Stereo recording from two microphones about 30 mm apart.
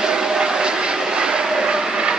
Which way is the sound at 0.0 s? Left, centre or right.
Right.